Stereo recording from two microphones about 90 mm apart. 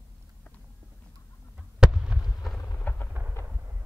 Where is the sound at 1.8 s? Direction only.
10° right (ahead or behind).